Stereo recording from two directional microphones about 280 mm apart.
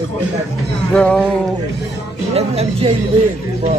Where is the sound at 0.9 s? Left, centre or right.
Centre.